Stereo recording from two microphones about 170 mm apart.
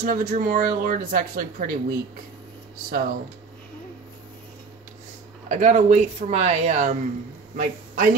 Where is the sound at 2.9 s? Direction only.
55° right (ahead or behind).